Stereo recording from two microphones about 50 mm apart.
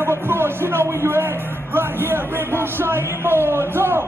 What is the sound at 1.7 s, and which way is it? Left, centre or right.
Speech, right.